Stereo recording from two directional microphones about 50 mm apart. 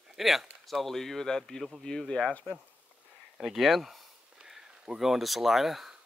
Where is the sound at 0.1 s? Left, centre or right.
Centre.